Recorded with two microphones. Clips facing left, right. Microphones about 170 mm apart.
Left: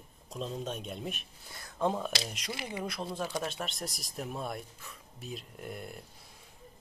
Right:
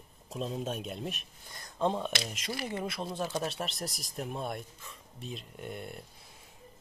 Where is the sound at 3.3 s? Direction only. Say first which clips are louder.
Right 1 dB; 30° right (ahead or behind).